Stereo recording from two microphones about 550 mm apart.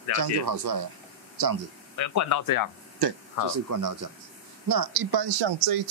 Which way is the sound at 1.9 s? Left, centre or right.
Left.